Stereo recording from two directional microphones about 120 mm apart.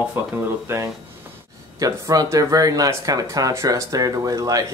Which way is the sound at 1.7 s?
30° right (ahead or behind).